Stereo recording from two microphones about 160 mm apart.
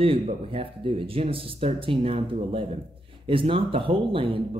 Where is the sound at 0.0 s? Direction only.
35° right (ahead or behind).